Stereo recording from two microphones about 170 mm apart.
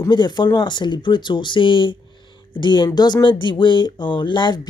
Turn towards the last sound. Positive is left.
turn(degrees=25)  # may be behind; listen again after turning